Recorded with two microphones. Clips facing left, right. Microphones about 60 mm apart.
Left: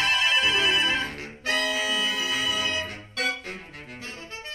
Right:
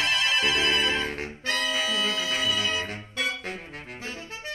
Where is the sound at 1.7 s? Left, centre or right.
Right.